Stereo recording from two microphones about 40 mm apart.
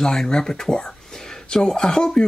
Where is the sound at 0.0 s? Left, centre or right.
Centre.